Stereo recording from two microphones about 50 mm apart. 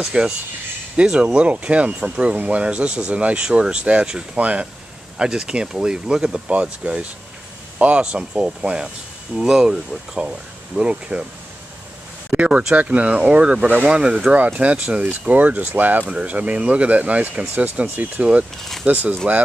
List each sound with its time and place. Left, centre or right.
0.0 s speech: centre
5.2 s speech: centre
12.3 s speech: right
18.6 s speech: centre
18.9 s speech: right